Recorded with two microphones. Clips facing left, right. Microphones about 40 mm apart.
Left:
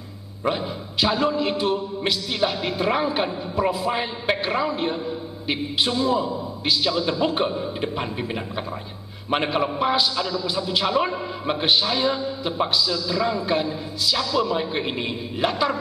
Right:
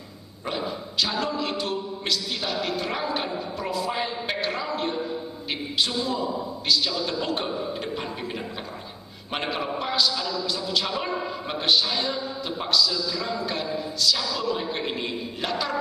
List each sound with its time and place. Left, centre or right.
0.5 s a man's voice: centre
9.3 s a man's voice: centre